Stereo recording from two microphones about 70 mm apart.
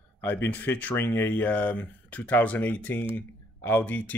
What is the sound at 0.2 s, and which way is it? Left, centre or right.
Speech, left.